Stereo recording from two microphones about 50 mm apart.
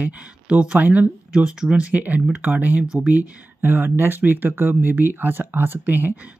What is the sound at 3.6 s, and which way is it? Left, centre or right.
Speech, right.